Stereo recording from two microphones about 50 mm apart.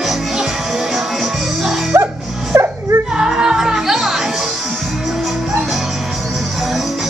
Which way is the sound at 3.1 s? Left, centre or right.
Centre.